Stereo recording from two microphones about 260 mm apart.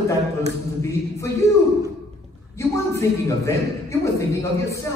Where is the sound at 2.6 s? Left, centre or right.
Centre.